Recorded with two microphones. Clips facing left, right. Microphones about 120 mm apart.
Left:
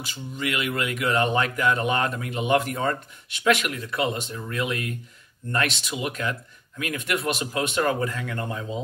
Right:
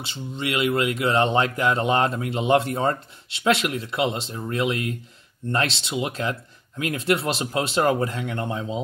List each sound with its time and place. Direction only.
0.0 s speech: 25° right (ahead or behind)